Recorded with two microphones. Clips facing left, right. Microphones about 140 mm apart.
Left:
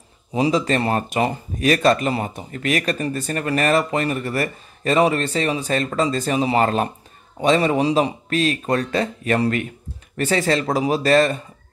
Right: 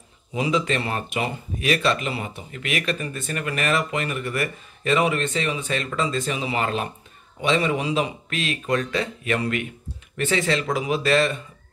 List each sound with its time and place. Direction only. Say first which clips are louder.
0.3 s speech: left 4 dB; 35° left (ahead or behind)